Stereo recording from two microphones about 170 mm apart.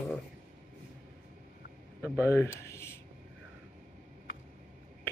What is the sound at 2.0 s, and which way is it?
Speech, 10° right (ahead or behind).